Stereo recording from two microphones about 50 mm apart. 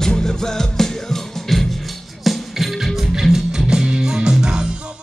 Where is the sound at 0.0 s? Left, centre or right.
Centre.